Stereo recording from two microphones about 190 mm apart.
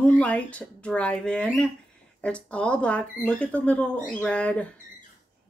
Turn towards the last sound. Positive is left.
turn(degrees=5)  # may be behind; listen again after turning